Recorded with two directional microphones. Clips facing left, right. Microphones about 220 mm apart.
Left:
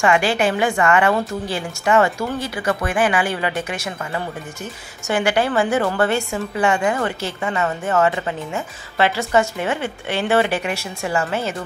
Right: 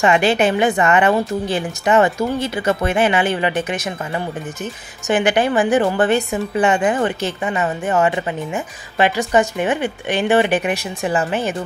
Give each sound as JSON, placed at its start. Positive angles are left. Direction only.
{"t": 0.0, "sound": "a woman's voice", "side_deg": -20}
{"t": 5.0, "sound": "a woman's voice", "side_deg": -20}